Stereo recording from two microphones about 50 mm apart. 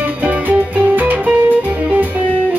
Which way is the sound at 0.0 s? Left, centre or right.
Right.